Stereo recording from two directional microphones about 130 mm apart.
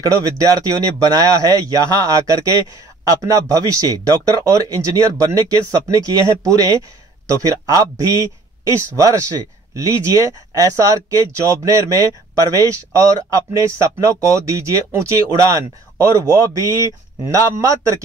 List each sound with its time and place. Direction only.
0.0 s speech: 25° right (ahead or behind)
7.7 s speech: 25° right (ahead or behind)